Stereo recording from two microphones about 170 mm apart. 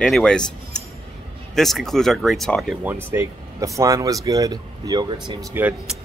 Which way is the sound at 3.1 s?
15° right (ahead or behind).